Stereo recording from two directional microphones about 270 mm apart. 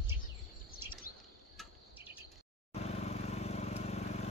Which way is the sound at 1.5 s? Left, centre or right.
Centre.